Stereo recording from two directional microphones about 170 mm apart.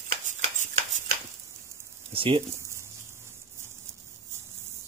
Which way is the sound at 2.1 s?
30° right (ahead or behind).